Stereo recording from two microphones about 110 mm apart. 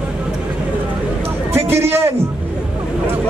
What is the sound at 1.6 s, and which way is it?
Speech, 20° right (ahead or behind).